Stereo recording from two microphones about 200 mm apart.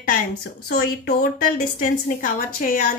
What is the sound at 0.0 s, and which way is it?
A woman's voice, 45° left (ahead or behind).